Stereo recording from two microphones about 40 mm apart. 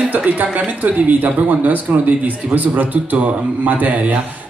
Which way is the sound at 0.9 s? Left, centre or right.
Right.